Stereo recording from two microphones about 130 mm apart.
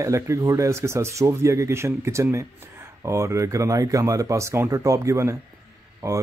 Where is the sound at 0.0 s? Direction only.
25° right (ahead or behind).